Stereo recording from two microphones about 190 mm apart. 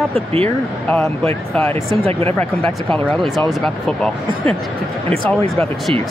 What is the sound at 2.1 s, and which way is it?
Speech, 30° right (ahead or behind).